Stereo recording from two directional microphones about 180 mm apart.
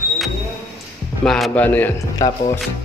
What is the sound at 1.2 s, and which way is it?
A man's voice, centre (ahead or behind).